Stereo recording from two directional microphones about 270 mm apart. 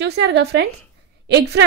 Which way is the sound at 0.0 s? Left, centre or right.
Right.